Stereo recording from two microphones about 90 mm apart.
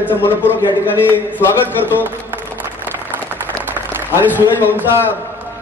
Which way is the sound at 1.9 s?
20° right (ahead or behind).